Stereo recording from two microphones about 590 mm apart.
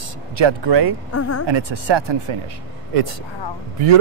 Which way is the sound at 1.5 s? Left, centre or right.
Right.